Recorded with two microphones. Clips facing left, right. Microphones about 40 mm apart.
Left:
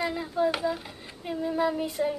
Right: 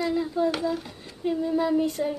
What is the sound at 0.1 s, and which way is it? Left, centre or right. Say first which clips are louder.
A woman's voice: right 2 dB; centre.